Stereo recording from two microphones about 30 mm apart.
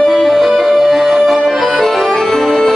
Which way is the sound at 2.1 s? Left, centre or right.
Centre.